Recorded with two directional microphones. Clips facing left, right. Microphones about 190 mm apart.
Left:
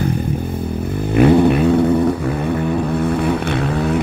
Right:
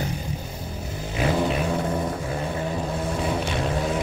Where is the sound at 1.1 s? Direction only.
60° left (ahead or behind).